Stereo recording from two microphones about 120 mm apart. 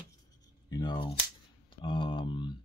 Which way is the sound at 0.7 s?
40° left (ahead or behind).